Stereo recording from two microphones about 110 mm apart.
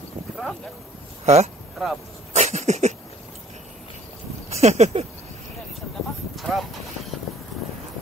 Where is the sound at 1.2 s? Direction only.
80° right.